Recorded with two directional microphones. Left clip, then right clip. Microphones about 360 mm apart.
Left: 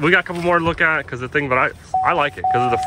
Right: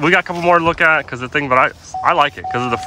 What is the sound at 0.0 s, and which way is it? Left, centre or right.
Speech, centre.